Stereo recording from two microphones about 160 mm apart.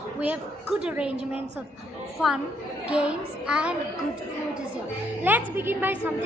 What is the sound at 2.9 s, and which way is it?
Speech, 5° right (ahead or behind).